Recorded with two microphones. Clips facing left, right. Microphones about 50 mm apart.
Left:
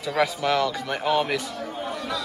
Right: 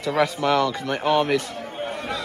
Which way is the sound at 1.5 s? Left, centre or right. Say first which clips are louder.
Right 1 dB; right.